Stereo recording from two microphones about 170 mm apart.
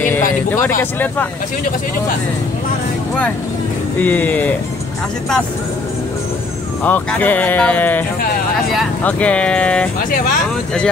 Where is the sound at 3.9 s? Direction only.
10° left (ahead or behind).